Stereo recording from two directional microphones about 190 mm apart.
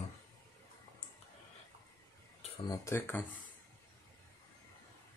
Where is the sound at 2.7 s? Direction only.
15° left (ahead or behind).